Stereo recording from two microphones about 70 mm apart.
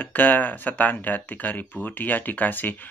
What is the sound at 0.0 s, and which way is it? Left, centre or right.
Speech, left.